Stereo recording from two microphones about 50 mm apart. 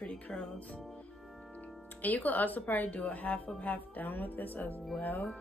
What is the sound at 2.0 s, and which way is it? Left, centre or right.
A woman's voice, left.